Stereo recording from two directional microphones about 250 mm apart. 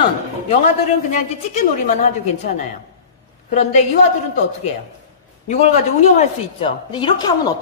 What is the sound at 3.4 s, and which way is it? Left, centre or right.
Speech, left.